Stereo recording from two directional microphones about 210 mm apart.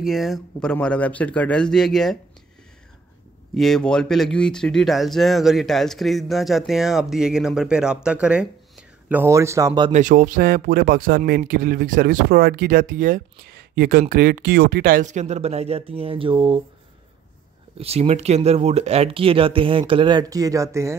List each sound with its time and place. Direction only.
0.0 s speech: centre (ahead or behind)
3.5 s speech: centre (ahead or behind); by 9.9 s 20° right (ahead or behind)
9.9 s speech: 40° right (ahead or behind)
17.7 s speech: 30° right (ahead or behind)